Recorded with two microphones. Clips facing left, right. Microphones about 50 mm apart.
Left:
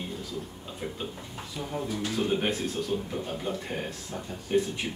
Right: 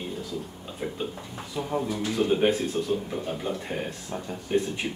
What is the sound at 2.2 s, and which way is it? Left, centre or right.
Speech, centre.